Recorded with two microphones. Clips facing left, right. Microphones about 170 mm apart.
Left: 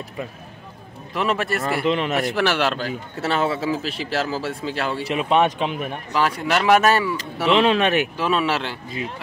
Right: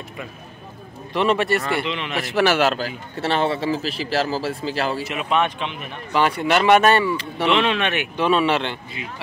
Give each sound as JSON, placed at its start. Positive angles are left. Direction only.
{"t": 1.1, "sound": "speech", "side_deg": 0}
{"t": 1.9, "sound": "speech", "side_deg": 45}
{"t": 2.1, "sound": "speech", "side_deg": 0}
{"t": 5.0, "sound": "speech", "side_deg": 35}
{"t": 6.1, "sound": "speech", "side_deg": 0}
{"t": 7.5, "sound": "speech", "side_deg": 35}
{"t": 8.2, "sound": "speech", "side_deg": 0}